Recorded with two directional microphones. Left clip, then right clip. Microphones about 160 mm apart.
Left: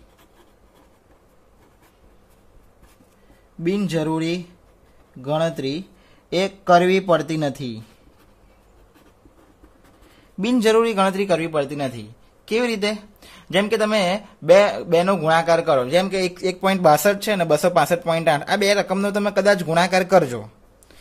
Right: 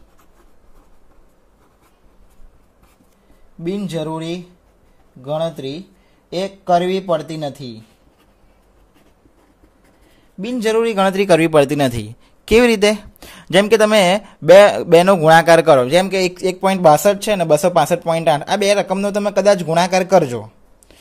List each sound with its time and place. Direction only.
3.6 s speech: 20° left (ahead or behind)
10.6 s speech: centre (ahead or behind)
10.9 s a man's voice: 15° right (ahead or behind)
11.1 s a man's voice: 35° right (ahead or behind); by 21.0 s 15° right (ahead or behind)